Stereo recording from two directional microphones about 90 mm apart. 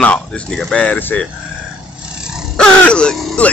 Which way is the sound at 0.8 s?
15° left (ahead or behind).